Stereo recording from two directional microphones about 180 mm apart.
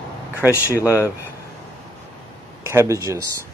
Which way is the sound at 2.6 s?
15° right (ahead or behind).